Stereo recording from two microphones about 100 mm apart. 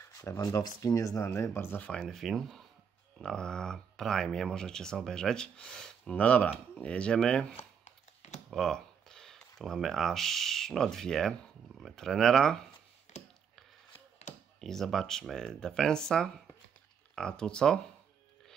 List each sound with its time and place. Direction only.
0.2 s speech: 35° left (ahead or behind)
2.0 s speech: centre (ahead or behind)
14.6 s speech: 5° left (ahead or behind)